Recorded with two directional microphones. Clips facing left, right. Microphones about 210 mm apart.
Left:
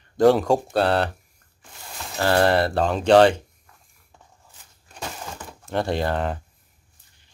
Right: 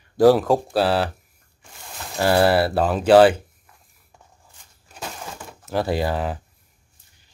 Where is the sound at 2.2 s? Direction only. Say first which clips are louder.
Right 2 dB; 10° right (ahead or behind).